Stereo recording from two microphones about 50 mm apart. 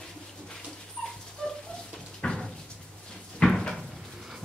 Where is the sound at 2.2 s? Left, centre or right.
Centre.